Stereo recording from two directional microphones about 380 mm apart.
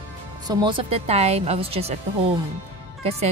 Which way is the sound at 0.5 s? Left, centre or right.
Centre.